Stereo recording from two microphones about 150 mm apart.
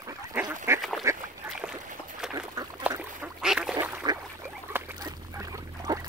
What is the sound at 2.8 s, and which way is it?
Duck, 10° right (ahead or behind).